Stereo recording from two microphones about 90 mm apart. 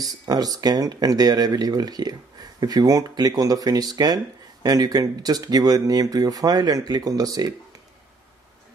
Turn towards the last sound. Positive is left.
turn(degrees=-45)  # may be behind; listen again after turning